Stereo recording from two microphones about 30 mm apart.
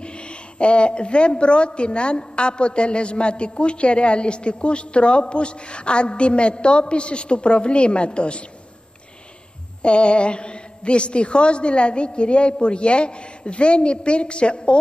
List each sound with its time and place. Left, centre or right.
0.0 s a woman's voice: left
9.8 s a woman's voice: left